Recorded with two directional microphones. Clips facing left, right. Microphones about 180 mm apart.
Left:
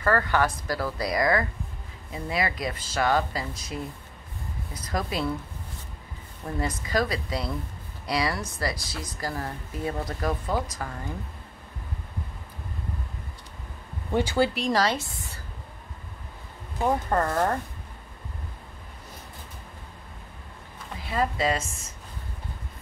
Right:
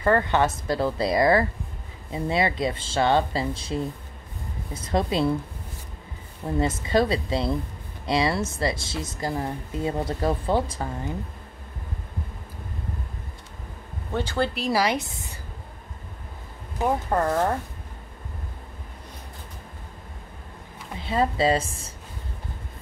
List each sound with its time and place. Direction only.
0.0 s speech: 20° right (ahead or behind)
6.4 s speech: 25° right (ahead or behind)
14.1 s speech: 10° left (ahead or behind)
14.6 s speech: 10° right (ahead or behind)
16.7 s speech: 10° right (ahead or behind)
21.0 s speech: 25° right (ahead or behind)